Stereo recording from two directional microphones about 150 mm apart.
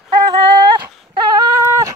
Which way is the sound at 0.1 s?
30° right (ahead or behind).